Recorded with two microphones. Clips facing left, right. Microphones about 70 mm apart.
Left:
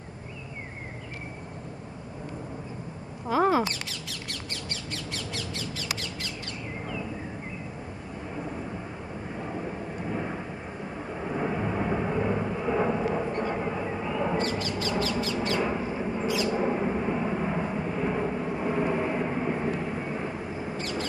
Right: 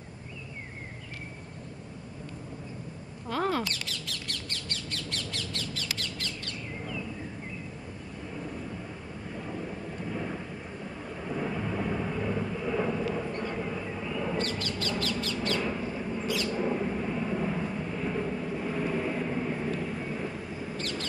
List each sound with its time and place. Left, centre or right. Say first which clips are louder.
3.3 s mouse: left 6 dB; centre
4.1 s bird: left 1 dB; centre
9.3 s vehicle: left 2 dB; left